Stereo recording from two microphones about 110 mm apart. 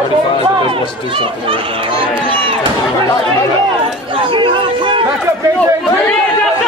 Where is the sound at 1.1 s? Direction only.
55° right (ahead or behind).